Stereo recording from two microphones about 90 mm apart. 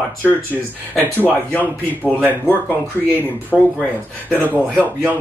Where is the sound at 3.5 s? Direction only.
5° right (ahead or behind).